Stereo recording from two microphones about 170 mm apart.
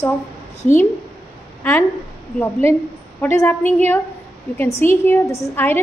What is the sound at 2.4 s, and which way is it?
A woman's voice, 15° left (ahead or behind).